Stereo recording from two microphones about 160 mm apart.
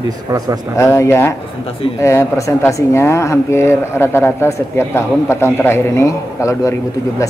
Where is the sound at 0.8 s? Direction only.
15° left (ahead or behind).